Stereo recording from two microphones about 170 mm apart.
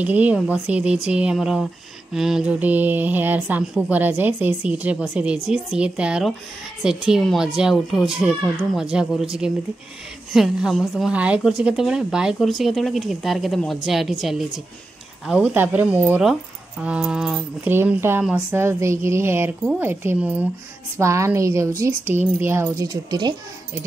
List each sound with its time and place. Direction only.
0.0 s speech: 10° right (ahead or behind); by 23.8 s 25° right (ahead or behind)